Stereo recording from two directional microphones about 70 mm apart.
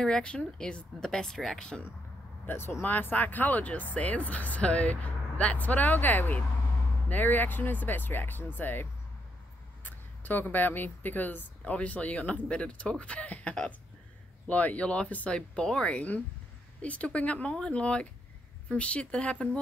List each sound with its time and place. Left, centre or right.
0.0 s speech: centre
2.4 s speech: left
9.8 s speech: left